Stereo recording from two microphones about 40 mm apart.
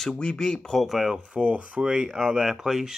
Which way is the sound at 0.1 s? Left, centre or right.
Left.